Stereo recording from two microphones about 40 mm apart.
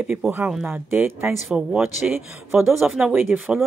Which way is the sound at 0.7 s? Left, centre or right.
Right.